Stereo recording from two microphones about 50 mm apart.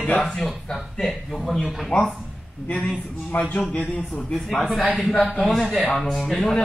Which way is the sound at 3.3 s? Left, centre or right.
Left.